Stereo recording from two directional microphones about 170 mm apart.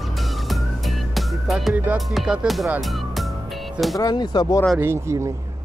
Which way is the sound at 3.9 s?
25° left (ahead or behind).